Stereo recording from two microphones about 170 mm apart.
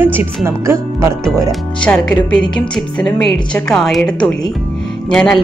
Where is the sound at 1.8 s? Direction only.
5° left (ahead or behind).